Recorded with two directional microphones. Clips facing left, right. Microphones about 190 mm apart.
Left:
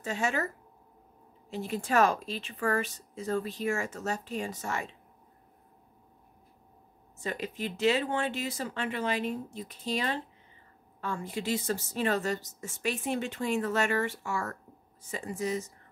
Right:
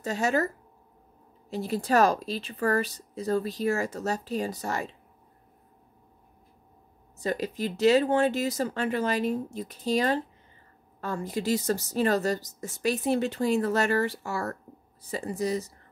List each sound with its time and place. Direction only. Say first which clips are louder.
0.0 s a woman's voice: right 5 dB; 40° right (ahead or behind)
1.5 s a woman's voice: right 4 dB; 35° right (ahead or behind)
7.2 s a woman's voice: right 6 dB; 40° right (ahead or behind)